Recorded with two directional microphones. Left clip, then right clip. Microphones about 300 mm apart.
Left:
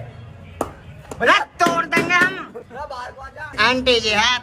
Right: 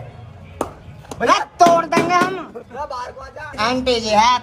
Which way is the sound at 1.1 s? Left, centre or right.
Centre.